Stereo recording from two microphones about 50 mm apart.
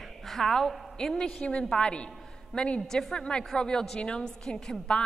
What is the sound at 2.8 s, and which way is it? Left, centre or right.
A woman's voice, centre.